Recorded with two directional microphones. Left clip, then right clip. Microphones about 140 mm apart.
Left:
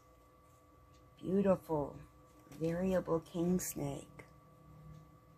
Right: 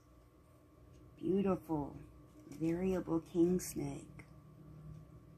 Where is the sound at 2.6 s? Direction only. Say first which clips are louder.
Left 2 dB; 45° left (ahead or behind).